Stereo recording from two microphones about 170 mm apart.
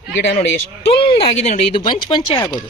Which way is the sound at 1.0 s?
30° left (ahead or behind).